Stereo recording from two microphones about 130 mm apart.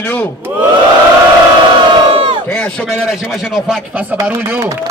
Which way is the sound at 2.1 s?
40° right (ahead or behind).